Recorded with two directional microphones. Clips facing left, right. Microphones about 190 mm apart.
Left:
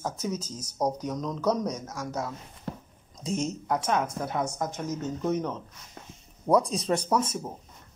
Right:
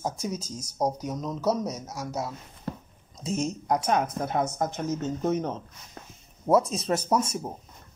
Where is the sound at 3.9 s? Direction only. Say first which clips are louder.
Right 1 dB; 45° right (ahead or behind).